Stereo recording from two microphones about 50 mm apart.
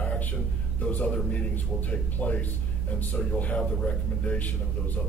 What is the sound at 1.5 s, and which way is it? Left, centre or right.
A man's voice, left.